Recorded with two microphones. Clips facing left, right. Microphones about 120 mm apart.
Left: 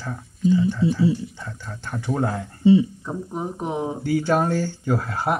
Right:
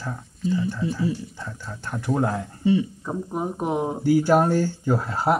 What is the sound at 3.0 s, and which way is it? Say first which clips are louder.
Speech: right 1 dB; 10° right (ahead or behind).